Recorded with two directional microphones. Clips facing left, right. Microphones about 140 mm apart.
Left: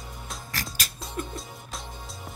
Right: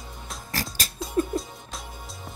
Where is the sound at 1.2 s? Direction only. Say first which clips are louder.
Right 10 dB; 35° right (ahead or behind).